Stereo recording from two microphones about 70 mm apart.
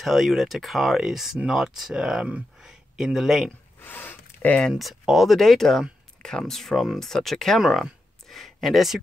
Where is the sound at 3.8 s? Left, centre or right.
Left.